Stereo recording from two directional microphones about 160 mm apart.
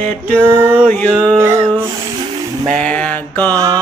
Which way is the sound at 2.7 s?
10° left (ahead or behind).